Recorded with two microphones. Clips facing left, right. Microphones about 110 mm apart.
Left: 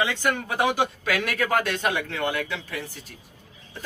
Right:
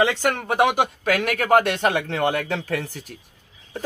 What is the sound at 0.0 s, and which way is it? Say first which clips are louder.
Speech: right 4 dB; 85° right.